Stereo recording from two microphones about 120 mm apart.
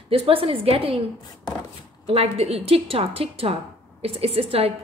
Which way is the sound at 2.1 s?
60° right (ahead or behind).